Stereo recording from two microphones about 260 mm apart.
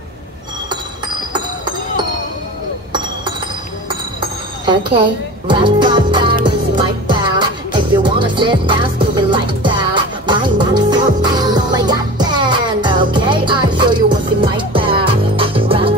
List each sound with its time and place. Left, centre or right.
4.2 s music: centre